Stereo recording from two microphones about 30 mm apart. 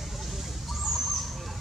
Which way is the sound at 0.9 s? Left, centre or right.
Centre.